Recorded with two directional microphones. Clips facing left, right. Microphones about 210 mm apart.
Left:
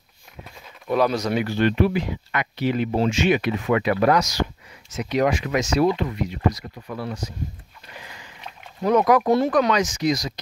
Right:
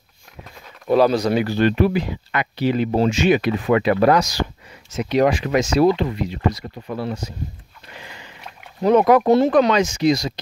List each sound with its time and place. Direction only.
0.8 s speech: 30° right (ahead or behind)
8.8 s speech: 25° right (ahead or behind)